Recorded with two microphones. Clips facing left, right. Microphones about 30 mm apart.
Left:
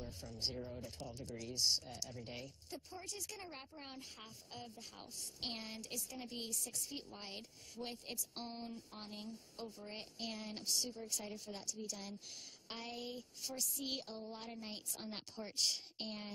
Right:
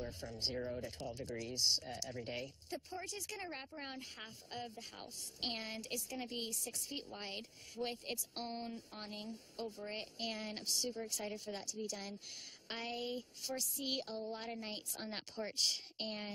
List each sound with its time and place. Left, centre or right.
0.2 s speech: right